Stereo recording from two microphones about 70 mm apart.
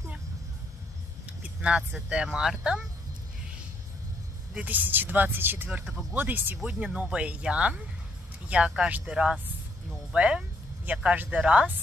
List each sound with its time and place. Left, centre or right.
1.2 s speech: centre
4.6 s speech: right
5.7 s speech: centre
6.1 s speech: right
6.6 s speech: centre
10.9 s speech: right
11.2 s speech: centre